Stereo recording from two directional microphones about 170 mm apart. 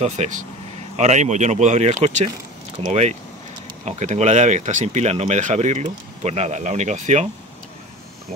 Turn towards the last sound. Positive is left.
turn(degrees=-45)  # may be behind; listen again after turning